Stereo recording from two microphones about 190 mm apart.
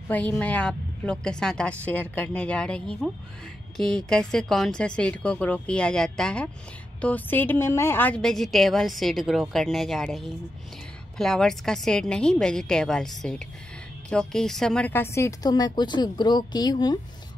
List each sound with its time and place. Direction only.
0.1 s a woman's voice: 10° left (ahead or behind)